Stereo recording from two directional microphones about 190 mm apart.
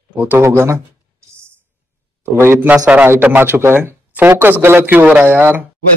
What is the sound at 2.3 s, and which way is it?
A man's voice, 10° right (ahead or behind).